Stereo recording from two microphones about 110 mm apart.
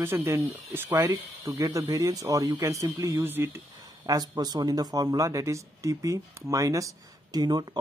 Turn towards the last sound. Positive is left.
turn(degrees=-40)  # may be behind; listen again after turning